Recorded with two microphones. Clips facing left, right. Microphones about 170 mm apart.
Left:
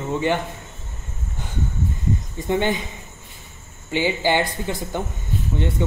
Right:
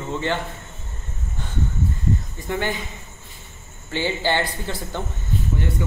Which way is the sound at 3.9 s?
15° left (ahead or behind).